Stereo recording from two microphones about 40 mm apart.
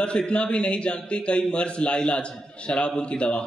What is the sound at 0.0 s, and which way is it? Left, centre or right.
A man's voice, left.